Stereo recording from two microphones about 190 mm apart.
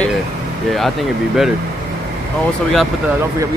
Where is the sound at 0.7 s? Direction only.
Centre (ahead or behind).